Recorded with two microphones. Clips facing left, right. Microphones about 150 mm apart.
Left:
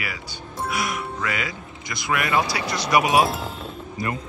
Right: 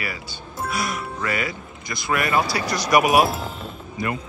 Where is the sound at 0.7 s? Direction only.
15° left (ahead or behind).